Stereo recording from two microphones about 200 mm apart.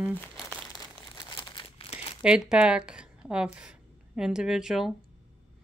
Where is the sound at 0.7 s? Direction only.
20° left (ahead or behind).